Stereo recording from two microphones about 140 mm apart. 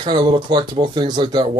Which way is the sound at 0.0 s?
30° right (ahead or behind).